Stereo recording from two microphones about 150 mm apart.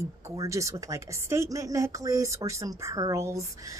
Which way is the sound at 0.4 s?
20° right (ahead or behind).